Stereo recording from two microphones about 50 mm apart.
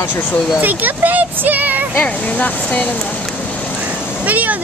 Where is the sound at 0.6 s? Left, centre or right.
Right.